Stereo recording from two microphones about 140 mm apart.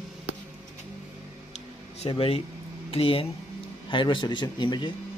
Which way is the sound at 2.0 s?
45° left (ahead or behind).